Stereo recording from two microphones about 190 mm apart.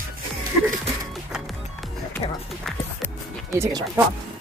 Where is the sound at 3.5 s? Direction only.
15° right (ahead or behind).